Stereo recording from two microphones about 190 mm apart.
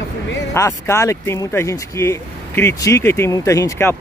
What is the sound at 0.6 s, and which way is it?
Speech, 15° left (ahead or behind).